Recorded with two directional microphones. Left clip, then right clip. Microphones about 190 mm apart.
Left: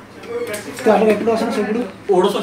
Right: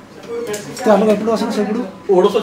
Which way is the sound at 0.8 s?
15° right (ahead or behind).